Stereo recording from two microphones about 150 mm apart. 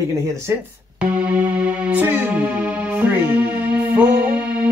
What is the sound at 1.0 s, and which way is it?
Music, 10° right (ahead or behind).